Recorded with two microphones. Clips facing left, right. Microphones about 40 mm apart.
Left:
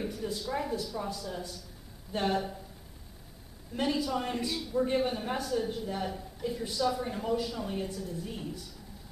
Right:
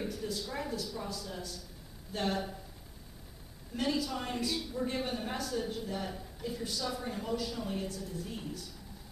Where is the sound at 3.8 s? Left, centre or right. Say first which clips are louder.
Left 3 dB; centre.